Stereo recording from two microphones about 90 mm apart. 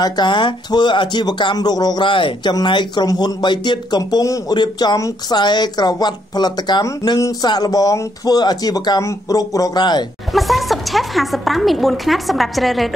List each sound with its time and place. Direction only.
0.0 s speech: 55° left (ahead or behind)
2.0 s speech: 70° left (ahead or behind)
2.5 s speech: 55° left (ahead or behind)
4.0 s speech: 40° left (ahead or behind)
10.3 s speech: centre (ahead or behind)